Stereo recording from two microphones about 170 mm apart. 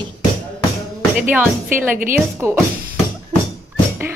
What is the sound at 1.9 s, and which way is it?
Speech, 55° right (ahead or behind).